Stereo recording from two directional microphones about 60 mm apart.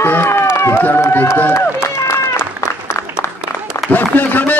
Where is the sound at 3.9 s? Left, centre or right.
Left.